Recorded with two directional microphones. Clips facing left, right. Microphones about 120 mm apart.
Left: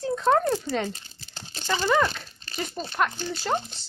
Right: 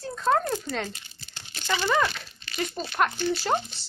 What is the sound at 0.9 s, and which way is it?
Crumpling, 35° left (ahead or behind).